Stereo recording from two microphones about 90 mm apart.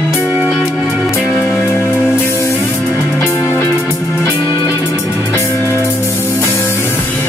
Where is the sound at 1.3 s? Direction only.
25° left (ahead or behind).